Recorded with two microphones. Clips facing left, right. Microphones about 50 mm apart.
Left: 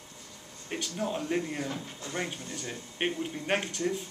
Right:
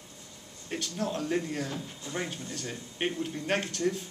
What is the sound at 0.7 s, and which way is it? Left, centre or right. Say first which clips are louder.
Speech: even; centre.